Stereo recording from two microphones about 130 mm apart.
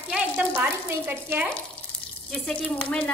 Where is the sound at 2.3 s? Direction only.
10° left (ahead or behind).